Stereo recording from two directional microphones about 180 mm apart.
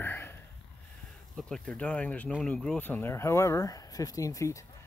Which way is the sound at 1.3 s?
5° left (ahead or behind).